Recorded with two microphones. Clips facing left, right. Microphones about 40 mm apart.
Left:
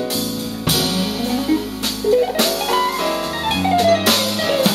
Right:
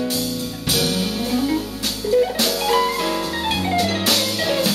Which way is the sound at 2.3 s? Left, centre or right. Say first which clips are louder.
Left 2 dB; left.